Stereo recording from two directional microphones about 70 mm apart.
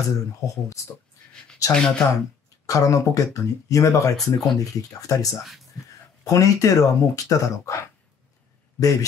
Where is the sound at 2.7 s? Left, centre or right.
Left.